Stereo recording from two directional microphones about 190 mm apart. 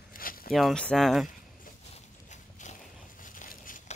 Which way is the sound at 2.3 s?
40° left (ahead or behind).